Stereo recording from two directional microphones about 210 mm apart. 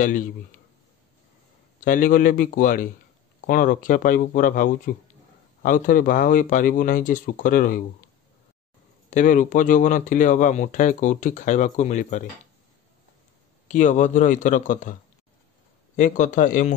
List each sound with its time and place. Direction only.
1.9 s speech: 40° left (ahead or behind)
9.1 s speech: 40° left (ahead or behind)
13.7 s speech: 35° left (ahead or behind)
16.0 s speech: 35° left (ahead or behind)